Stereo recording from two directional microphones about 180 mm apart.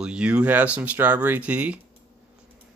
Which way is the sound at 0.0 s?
5° right (ahead or behind).